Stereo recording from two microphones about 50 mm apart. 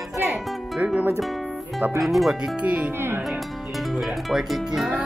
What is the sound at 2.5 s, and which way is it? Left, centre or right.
Speech, right.